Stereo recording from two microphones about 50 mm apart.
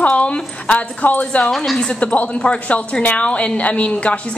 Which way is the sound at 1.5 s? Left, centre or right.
Centre.